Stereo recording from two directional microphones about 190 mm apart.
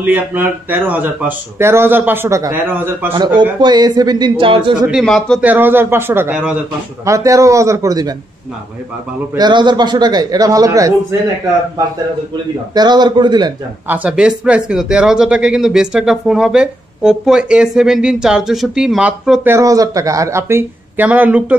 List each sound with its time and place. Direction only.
0.0 s speech: 10° right (ahead or behind)
3.6 s a man's voice: 20° right (ahead or behind)
5.0 s speech: 5° left (ahead or behind)
5.4 s speech: 10° right (ahead or behind)
9.4 s a man's voice: 25° right (ahead or behind)
12.7 s a man's voice: 20° right (ahead or behind)
13.8 s speech: 10° right (ahead or behind)
19.5 s speech: 15° right (ahead or behind)